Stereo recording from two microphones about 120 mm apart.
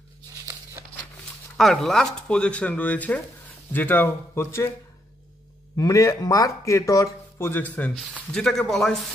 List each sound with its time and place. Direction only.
1.6 s speech: centre (ahead or behind); by 4.7 s 20° left (ahead or behind)
5.8 s speech: 25° left (ahead or behind); by 9.1 s centre (ahead or behind)